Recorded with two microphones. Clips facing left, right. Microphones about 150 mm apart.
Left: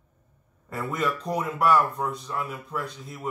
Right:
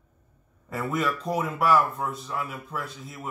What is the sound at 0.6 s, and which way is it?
Speech, 5° right (ahead or behind).